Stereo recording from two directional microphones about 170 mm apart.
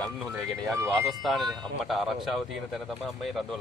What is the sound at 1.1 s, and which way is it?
Speech, centre (ahead or behind).